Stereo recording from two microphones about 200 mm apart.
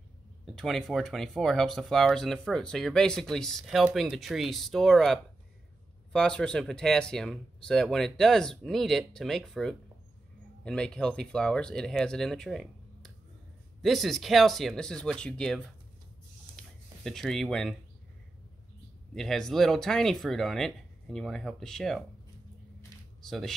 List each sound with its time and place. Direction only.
0.6 s speech: centre (ahead or behind)
16.5 s a sound: centre (ahead or behind)
19.1 s speech: centre (ahead or behind)
23.2 s speech: centre (ahead or behind)